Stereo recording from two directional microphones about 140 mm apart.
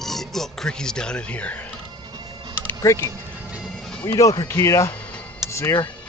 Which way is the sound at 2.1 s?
30° right (ahead or behind).